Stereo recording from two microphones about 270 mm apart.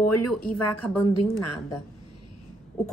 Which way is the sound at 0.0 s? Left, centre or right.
Left.